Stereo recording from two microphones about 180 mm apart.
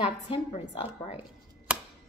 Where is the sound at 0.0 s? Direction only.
35° left (ahead or behind).